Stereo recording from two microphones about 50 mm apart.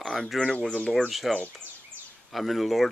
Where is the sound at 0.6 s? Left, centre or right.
Centre.